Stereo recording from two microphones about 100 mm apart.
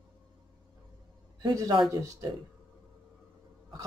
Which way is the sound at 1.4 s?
40° right (ahead or behind).